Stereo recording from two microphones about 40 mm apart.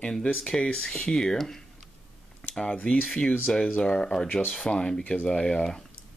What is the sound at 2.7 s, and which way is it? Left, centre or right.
Speech, left.